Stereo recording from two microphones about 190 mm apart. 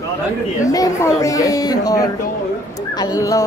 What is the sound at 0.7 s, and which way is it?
A woman's voice, 15° left (ahead or behind).